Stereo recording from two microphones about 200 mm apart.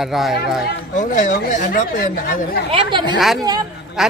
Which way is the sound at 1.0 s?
40° left (ahead or behind).